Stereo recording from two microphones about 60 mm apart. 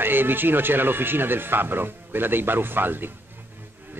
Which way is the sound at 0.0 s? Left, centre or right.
Right.